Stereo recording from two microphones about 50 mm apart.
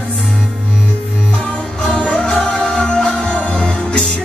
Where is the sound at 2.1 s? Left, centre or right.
Centre.